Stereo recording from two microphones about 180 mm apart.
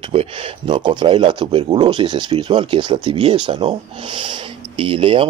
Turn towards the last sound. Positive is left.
turn(degrees=-30)  # may be behind; listen again after turning